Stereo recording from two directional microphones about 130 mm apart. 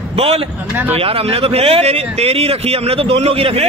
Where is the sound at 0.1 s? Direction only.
50° right (ahead or behind).